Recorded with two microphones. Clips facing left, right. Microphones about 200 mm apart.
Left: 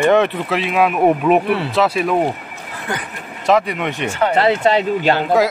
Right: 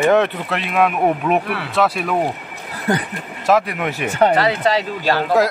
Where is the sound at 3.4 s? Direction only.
Centre (ahead or behind).